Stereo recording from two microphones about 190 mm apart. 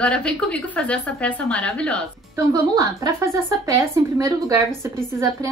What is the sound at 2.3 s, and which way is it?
Speech, 15° right (ahead or behind).